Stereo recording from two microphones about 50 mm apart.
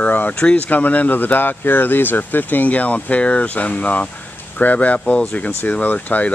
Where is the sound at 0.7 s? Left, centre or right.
Left.